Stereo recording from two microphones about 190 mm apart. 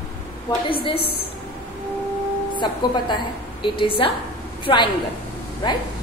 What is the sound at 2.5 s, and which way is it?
A woman's voice, 25° left (ahead or behind).